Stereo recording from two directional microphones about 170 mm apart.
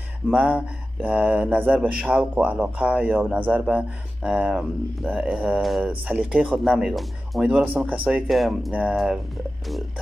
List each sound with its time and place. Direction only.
0.3 s speech: 10° right (ahead or behind)